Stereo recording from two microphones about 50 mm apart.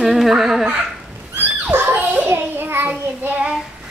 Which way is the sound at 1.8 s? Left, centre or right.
Right.